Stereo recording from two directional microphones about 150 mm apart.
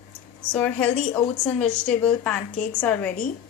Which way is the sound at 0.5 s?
10° left (ahead or behind).